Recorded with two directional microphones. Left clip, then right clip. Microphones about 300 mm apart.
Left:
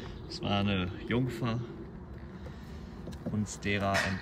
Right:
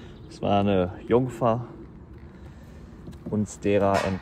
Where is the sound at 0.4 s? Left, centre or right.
Centre.